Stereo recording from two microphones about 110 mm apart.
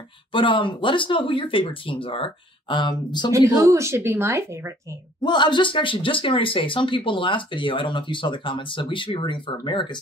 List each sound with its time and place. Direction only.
0.3 s speech: 50° left (ahead or behind)
3.3 s speech: 25° right (ahead or behind)
5.2 s speech: 40° left (ahead or behind)